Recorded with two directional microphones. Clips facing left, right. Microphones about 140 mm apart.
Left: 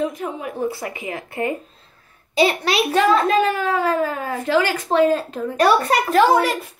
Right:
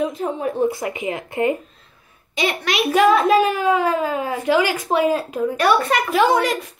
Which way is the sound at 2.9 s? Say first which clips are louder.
Right 3 dB; 10° right (ahead or behind).